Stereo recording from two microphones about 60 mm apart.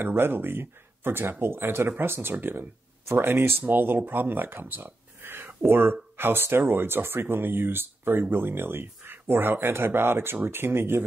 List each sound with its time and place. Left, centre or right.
0.0 s speech: right